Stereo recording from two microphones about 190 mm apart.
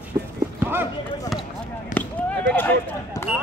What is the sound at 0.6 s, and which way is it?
Clip-clop, 10° right (ahead or behind).